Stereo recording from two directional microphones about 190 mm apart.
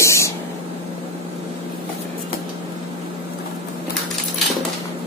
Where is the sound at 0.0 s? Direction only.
15° left (ahead or behind).